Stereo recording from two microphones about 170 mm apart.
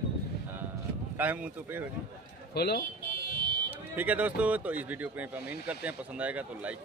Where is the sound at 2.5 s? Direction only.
70° left (ahead or behind).